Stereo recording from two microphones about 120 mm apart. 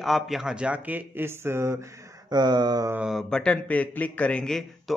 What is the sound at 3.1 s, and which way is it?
A man's voice, 5° left (ahead or behind).